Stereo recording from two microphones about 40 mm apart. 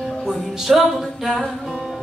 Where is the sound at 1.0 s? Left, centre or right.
Centre.